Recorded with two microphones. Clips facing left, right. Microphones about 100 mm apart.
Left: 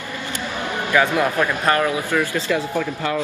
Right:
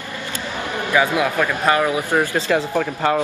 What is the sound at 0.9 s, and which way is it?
Speech, 10° right (ahead or behind).